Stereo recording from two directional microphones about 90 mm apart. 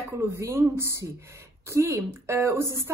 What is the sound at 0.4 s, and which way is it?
A woman's voice, 25° right (ahead or behind).